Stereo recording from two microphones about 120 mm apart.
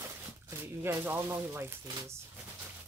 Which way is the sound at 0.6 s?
20° right (ahead or behind).